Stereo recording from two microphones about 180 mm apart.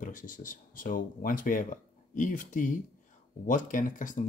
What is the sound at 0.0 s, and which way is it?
Speech, 50° left (ahead or behind).